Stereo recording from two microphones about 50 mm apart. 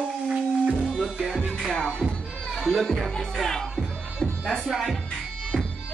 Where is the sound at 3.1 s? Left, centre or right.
Centre.